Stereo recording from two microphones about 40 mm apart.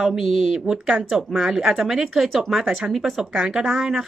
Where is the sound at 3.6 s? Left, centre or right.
Centre.